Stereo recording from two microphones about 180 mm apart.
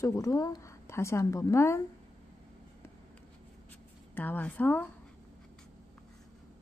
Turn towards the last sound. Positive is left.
turn(degrees=10)  # may be behind; listen again after turning